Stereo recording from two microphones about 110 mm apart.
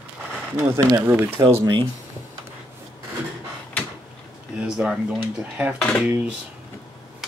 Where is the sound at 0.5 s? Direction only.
20° right (ahead or behind).